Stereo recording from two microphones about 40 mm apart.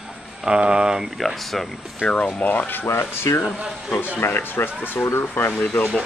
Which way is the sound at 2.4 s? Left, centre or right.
Left.